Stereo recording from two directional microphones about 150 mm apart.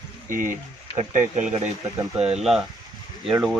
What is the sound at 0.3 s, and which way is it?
Speech, 60° right (ahead or behind).